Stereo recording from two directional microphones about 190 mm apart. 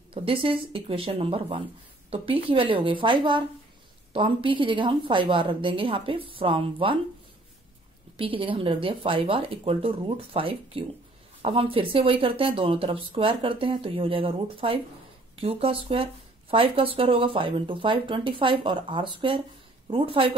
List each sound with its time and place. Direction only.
0.1 s speech: 30° right (ahead or behind)
8.2 s speech: 30° right (ahead or behind)